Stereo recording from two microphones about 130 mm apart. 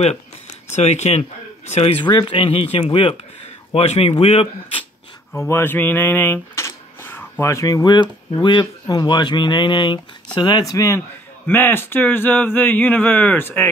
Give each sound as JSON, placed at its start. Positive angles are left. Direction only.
{"t": 0.7, "sound": "speech", "side_deg": 60}
{"t": 2.0, "sound": "speech", "side_deg": 35}
{"t": 5.4, "sound": "a man's voice", "side_deg": 20}